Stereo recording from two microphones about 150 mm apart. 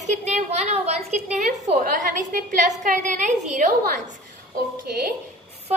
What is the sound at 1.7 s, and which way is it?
A woman's voice, 70° right (ahead or behind).